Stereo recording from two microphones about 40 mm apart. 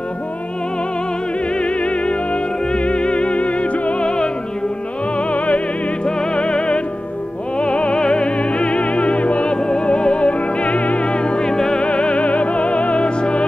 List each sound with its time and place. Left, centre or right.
1.5 s music: left
5.1 s music: left
11.8 s music: left